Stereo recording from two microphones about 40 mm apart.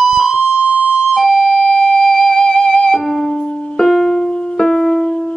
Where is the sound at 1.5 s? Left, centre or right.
Left.